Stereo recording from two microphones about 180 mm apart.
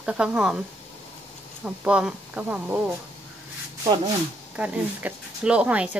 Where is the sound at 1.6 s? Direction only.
5° right (ahead or behind).